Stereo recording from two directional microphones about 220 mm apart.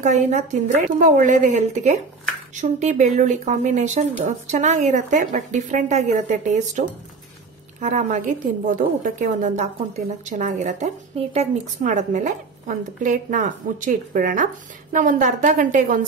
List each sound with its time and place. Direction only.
0.0 s a woman's voice: 30° right (ahead or behind)